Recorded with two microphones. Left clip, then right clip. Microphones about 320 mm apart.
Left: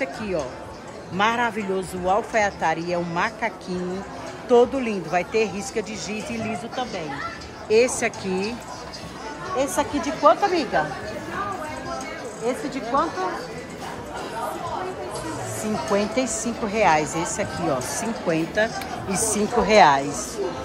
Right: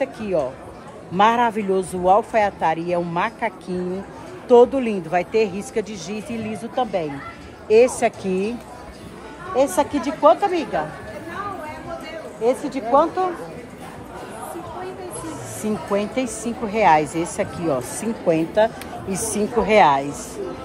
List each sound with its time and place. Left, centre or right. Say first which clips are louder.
0.0 s a man's voice: right 4 dB; centre
9.6 s a man's voice: right 5 dB; centre
12.4 s speech: right 6 dB; centre
15.9 s a man's voice: left 1 dB; centre